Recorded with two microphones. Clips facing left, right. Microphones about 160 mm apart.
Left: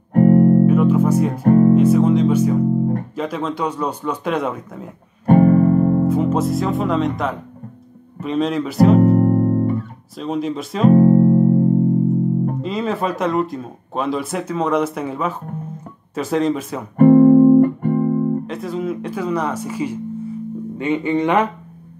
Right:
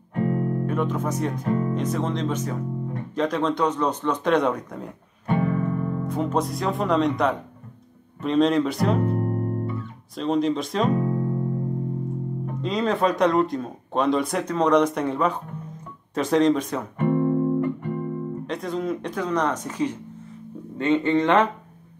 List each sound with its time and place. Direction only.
0.1 s music: 50° left (ahead or behind)
0.7 s speech: 5° left (ahead or behind)
1.4 s speech: 50° left (ahead or behind)
1.8 s speech: 10° left (ahead or behind)
5.2 s music: 50° left (ahead or behind)
6.0 s speech: 5° left (ahead or behind)
9.0 s music: 50° left (ahead or behind)
10.1 s speech: 5° left (ahead or behind)
10.9 s music: 45° left (ahead or behind)
12.6 s speech: 5° left (ahead or behind)
16.9 s music: 45° left (ahead or behind)
18.5 s speech: 5° left (ahead or behind)